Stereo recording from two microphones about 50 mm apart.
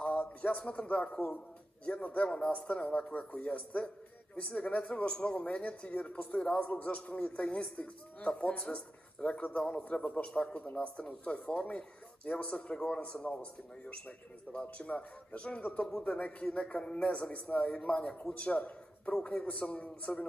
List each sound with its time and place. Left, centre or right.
0.0 s music: left
1.9 s a man's voice: left